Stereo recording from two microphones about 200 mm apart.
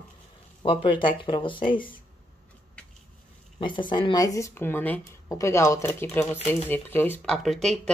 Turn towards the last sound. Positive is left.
turn(degrees=0)  # may be behind; listen again after turning